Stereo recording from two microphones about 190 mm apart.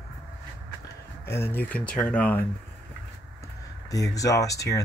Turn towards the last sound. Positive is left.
turn(degrees=15)  # may be behind; listen again after turning